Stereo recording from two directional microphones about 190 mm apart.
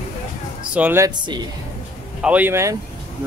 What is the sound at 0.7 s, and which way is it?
Speech, 10° right (ahead or behind).